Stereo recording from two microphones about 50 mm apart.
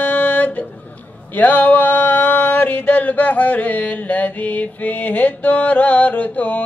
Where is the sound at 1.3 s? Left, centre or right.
Left.